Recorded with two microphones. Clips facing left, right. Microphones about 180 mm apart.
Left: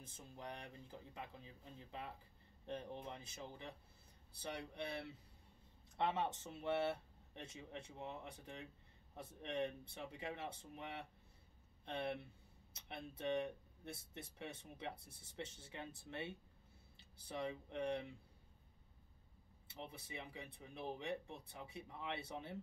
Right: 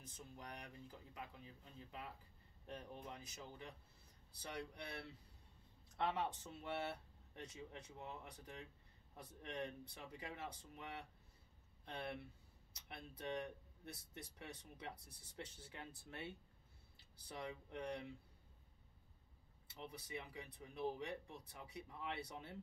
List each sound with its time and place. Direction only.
0.0 s speech: 25° left (ahead or behind)
19.7 s speech: 25° left (ahead or behind)